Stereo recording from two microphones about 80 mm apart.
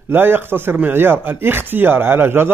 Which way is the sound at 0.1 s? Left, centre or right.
Right.